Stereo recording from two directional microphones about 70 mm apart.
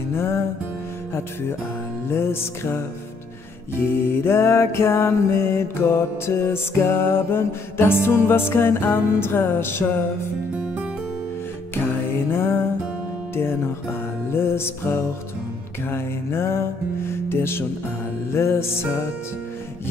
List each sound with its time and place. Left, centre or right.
0.1 s music: left
2.0 s music: left
11.7 s music: left